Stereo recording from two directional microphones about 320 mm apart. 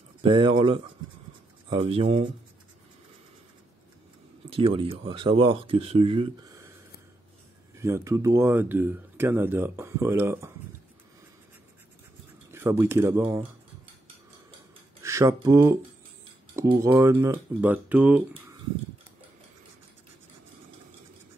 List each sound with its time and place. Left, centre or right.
0.2 s speech: centre
4.5 s speech: centre
7.8 s speech: centre
12.4 s speech: centre
15.0 s speech: centre